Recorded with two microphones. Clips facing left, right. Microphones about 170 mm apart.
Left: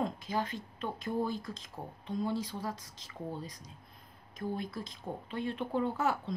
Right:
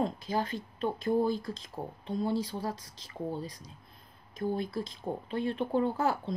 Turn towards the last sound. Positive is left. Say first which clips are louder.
# right 3 dB
turn(degrees=-30)  # may be behind; listen again after turning